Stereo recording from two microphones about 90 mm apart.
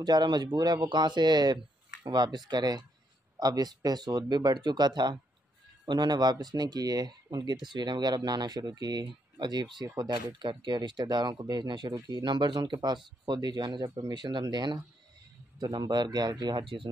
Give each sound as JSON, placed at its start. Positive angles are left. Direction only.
{"t": 0.0, "sound": "speech", "side_deg": -55}
{"t": 0.8, "sound": "speech", "side_deg": -60}